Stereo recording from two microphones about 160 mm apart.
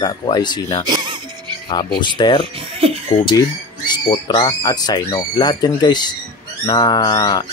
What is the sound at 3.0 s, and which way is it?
Speech, 40° left (ahead or behind).